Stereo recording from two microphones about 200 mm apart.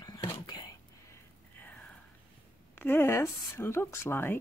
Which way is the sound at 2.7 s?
10° left (ahead or behind).